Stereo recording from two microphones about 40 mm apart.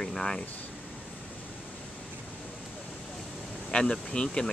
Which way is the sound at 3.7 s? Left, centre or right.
Centre.